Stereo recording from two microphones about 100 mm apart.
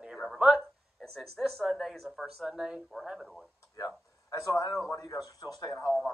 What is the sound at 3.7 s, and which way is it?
Speech, 35° left (ahead or behind).